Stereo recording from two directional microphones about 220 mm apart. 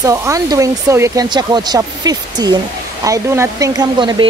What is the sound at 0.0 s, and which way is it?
Speech, 15° right (ahead or behind).